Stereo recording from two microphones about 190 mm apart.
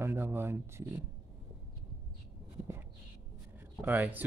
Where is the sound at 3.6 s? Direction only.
10° right (ahead or behind).